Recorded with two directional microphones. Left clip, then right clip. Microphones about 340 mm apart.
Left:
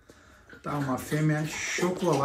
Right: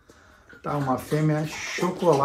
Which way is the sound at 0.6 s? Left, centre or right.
Centre.